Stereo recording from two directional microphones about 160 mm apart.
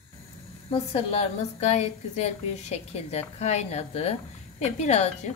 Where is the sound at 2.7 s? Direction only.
40° left (ahead or behind).